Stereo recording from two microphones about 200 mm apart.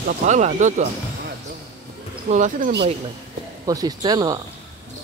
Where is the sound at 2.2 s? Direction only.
35° right (ahead or behind).